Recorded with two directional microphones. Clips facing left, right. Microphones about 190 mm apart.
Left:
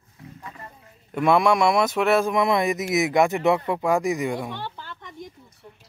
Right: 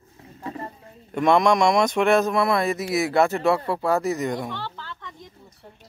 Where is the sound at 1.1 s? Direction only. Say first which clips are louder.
Right 1 dB; 5° left (ahead or behind).